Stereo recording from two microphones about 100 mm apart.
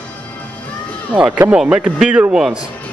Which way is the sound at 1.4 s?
15° right (ahead or behind).